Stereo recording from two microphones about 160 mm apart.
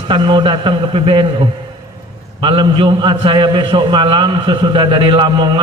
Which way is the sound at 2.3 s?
30° right (ahead or behind).